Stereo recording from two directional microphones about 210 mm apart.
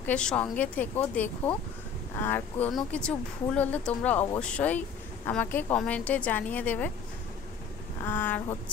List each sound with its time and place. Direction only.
0.0 s speech: 5° left (ahead or behind)
8.0 s speech: 10° left (ahead or behind)